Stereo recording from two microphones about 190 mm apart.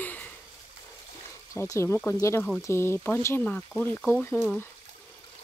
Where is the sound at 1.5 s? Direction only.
15° left (ahead or behind).